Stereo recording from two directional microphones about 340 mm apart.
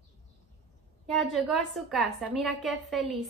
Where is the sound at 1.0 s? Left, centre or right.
Centre.